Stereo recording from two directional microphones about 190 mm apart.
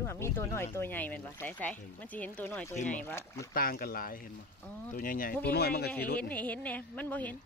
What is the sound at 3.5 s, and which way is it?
Speech, 50° left (ahead or behind).